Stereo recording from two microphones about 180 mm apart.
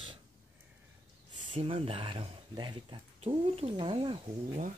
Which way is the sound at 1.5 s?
30° right (ahead or behind).